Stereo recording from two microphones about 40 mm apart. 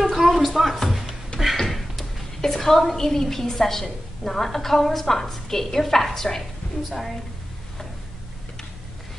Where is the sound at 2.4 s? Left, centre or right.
Centre.